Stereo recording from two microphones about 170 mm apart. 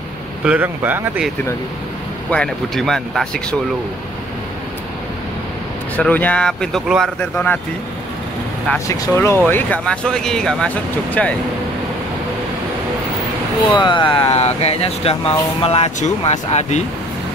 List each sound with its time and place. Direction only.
0.5 s speech: 10° right (ahead or behind)
2.3 s speech: 5° left (ahead or behind)
5.9 s speech: 10° left (ahead or behind)
8.6 s speech: 15° left (ahead or behind)
13.7 s speech: 30° left (ahead or behind)